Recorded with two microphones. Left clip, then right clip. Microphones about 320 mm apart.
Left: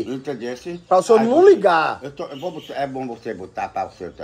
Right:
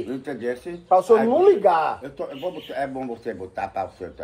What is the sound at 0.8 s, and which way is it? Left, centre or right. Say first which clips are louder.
Speech: left 2 dB; left.